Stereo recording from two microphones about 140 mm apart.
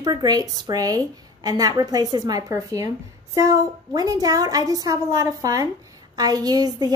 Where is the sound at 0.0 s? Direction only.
30° right (ahead or behind).